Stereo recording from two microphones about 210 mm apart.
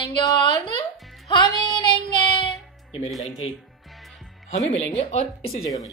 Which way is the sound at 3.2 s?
30° left (ahead or behind).